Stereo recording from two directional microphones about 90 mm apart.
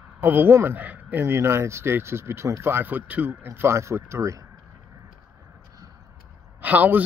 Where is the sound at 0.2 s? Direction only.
25° right (ahead or behind).